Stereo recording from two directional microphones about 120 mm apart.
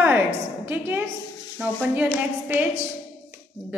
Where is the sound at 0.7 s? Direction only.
15° right (ahead or behind).